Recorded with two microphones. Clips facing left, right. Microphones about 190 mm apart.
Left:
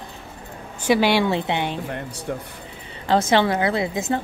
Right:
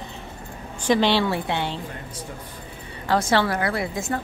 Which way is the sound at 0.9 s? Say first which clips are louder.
Left 2 dB; 10° left (ahead or behind).